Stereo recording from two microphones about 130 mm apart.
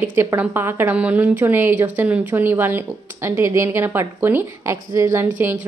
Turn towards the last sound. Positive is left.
turn(degrees=-15)  # may be behind; listen again after turning